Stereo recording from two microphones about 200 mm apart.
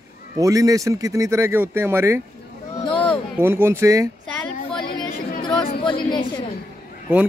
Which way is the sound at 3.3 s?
10° right (ahead or behind).